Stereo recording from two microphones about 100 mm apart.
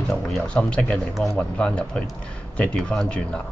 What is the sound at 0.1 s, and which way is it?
Speech, 5° left (ahead or behind).